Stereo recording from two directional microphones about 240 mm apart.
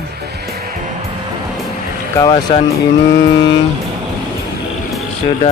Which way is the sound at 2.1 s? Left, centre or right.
Centre.